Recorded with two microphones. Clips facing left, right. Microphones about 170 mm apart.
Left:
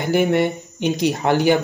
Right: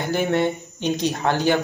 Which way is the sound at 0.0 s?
15° left (ahead or behind).